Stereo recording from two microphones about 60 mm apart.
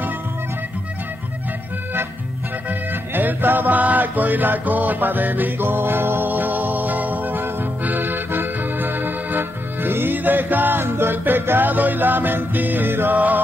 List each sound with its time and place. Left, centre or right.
2.7 s music: right